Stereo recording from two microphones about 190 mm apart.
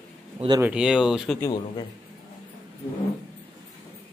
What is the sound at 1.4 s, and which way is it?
Speech, 25° left (ahead or behind).